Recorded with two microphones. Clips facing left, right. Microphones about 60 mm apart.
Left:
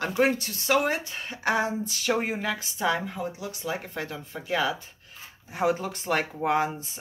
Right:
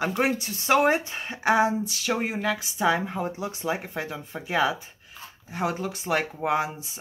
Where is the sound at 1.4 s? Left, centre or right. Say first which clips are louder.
Right 4 dB; centre.